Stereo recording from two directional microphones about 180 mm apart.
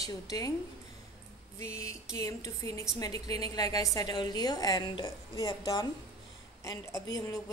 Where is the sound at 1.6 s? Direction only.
15° left (ahead or behind).